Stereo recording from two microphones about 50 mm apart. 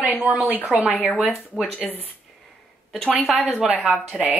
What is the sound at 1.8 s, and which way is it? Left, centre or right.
Speech, centre.